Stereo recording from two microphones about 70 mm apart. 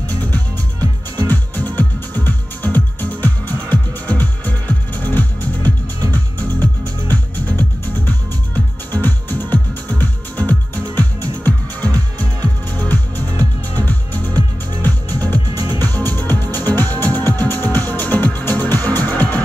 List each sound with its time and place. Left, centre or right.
0.1 s music: left
0.7 s music: right
1.3 s music: left
5.9 s music: right
7.1 s music: left
15.5 s music: right
15.8 s music: left